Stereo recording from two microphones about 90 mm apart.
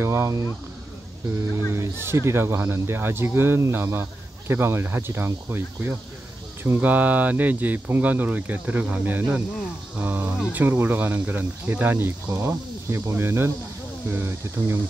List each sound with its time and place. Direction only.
0.0 s speech: 30° right (ahead or behind)
1.7 s speech: 30° right (ahead or behind)